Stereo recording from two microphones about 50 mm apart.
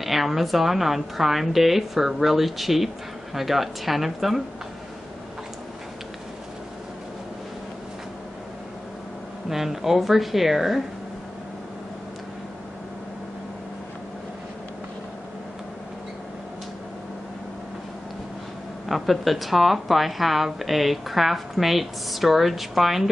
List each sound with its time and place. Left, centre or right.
0.0 s speech: centre
9.5 s speech: centre
18.9 s speech: centre